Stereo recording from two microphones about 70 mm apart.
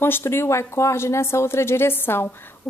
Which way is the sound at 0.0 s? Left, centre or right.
Left.